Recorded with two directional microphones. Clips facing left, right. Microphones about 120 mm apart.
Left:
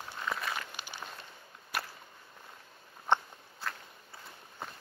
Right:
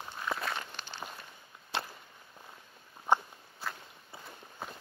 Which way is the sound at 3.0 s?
10° right (ahead or behind).